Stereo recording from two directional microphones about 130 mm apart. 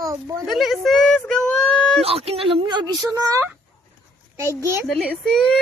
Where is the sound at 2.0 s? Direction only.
50° right (ahead or behind).